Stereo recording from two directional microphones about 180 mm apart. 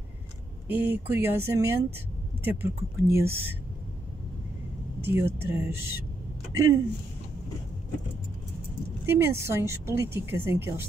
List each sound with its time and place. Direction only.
0.7 s a woman's voice: 10° right (ahead or behind)
5.0 s a woman's voice: 15° right (ahead or behind)
9.0 s a woman's voice: 15° right (ahead or behind)